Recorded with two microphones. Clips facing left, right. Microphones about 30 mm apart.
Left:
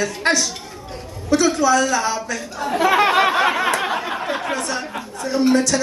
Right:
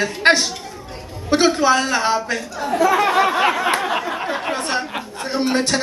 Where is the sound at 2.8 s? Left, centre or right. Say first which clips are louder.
Even; left.